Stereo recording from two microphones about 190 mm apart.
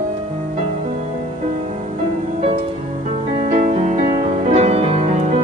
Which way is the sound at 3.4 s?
50° right (ahead or behind).